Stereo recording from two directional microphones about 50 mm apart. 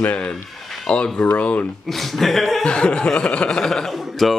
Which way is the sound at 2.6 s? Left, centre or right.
Left.